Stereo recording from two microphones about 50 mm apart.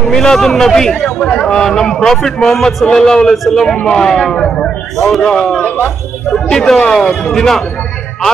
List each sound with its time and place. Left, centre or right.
0.0 s a man's voice: centre
1.0 s speech: left
1.5 s a man's voice: centre
7.1 s speech: centre